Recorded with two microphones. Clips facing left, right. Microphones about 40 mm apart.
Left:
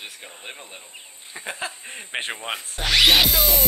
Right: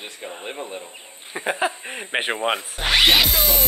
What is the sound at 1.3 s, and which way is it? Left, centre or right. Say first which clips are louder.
Speech: right 8 dB; right.